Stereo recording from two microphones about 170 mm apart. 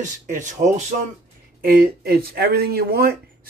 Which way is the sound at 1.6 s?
60° right (ahead or behind).